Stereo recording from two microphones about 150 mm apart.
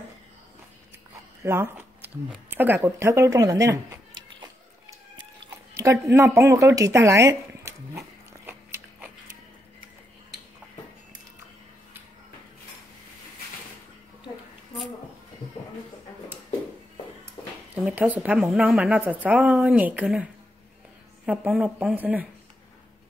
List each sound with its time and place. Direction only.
1.4 s speech: 15° right (ahead or behind)
5.8 s speech: 20° right (ahead or behind)
17.4 s a sound: 15° left (ahead or behind)
17.8 s a woman's voice: 10° right (ahead or behind)
21.3 s a woman's voice: 5° right (ahead or behind)